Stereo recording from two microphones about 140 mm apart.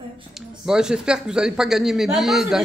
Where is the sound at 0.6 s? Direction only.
5° right (ahead or behind).